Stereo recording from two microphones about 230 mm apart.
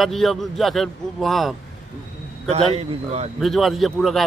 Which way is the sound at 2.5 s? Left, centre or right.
Right.